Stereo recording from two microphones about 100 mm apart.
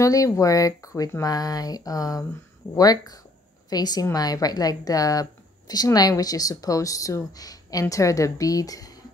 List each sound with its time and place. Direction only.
0.0 s speech: 35° left (ahead or behind)